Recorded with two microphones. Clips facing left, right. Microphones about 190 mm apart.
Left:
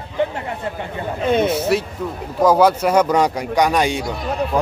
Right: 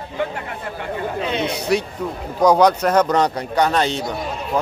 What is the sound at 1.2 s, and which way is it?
Speech, 50° left (ahead or behind).